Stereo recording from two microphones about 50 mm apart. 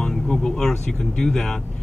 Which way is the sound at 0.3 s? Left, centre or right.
Centre.